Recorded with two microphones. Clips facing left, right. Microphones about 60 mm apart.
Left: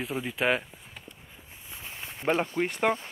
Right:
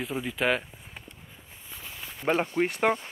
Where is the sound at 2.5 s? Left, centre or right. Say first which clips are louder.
Right 2 dB; right.